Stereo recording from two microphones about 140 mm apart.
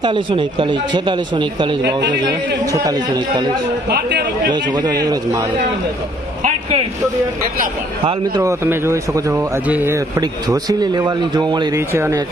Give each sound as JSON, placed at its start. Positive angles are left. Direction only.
{"t": 0.0, "sound": "a man's voice", "side_deg": -35}
{"t": 6.4, "sound": "a sound", "side_deg": -45}
{"t": 8.0, "sound": "speech", "side_deg": -40}
{"t": 8.4, "sound": "a man's voice", "side_deg": -20}
{"t": 11.9, "sound": "speech", "side_deg": -15}